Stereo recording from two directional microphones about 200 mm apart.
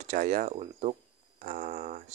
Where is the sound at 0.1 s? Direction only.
40° right (ahead or behind).